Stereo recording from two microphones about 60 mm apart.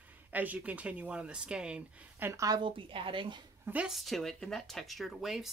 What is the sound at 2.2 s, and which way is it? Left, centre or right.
Speech, right.